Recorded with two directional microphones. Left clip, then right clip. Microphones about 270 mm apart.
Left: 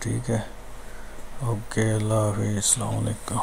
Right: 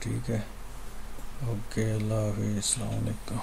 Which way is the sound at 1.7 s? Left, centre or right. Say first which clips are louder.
Left 7 dB; centre.